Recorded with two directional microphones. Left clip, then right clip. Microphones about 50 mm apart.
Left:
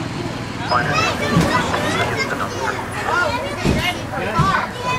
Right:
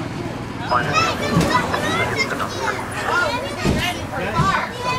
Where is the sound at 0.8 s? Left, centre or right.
Right.